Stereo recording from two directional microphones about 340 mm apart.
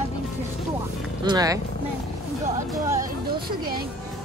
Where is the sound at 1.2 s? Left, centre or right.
Centre.